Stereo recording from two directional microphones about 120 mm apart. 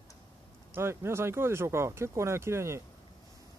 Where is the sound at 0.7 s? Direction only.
20° right (ahead or behind).